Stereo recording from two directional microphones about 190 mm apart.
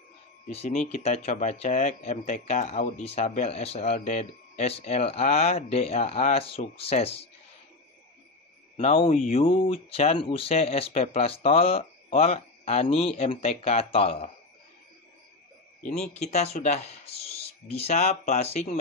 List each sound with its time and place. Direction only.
0.5 s speech: 35° left (ahead or behind)
8.7 s speech: 30° left (ahead or behind)
16.2 s speech: 35° left (ahead or behind)